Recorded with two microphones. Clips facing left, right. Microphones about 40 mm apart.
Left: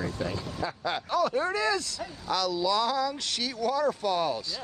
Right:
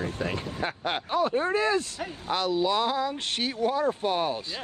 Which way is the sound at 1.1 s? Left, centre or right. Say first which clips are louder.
Right 2 dB; right.